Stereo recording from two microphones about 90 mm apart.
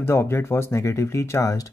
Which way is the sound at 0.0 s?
30° left (ahead or behind).